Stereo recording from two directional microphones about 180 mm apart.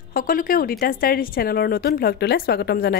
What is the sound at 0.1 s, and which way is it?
A woman's voice, 50° left (ahead or behind).